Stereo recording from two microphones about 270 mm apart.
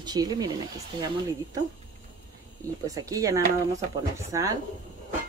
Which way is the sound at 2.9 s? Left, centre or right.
Centre.